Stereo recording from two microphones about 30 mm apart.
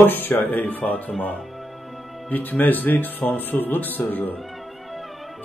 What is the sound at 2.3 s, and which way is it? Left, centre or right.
Speech, left.